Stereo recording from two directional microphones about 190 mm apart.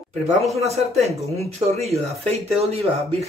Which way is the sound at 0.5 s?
35° right (ahead or behind).